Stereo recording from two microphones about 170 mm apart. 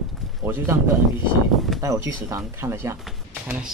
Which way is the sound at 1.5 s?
Centre (ahead or behind).